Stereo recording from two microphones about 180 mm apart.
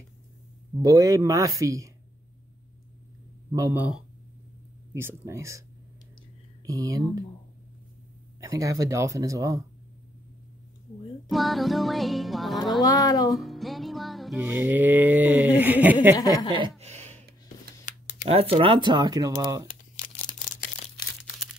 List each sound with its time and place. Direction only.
0.8 s speech: 20° right (ahead or behind)
3.5 s speech: 15° right (ahead or behind)
6.6 s speech: 20° right (ahead or behind)
8.4 s speech: 15° right (ahead or behind)
11.2 s music: centre (ahead or behind)
12.8 s speech: 20° left (ahead or behind)
13.3 s music: centre (ahead or behind)
14.4 s speech: 10° right (ahead or behind)
16.2 s speech: 20° left (ahead or behind)
16.8 s a sound: 40° right (ahead or behind)
17.9 s a sound: 45° left (ahead or behind)
18.2 s speech: 35° right (ahead or behind)
19.7 s a sound: 50° left (ahead or behind)